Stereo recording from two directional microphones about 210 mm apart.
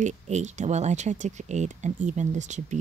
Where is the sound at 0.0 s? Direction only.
35° right (ahead or behind).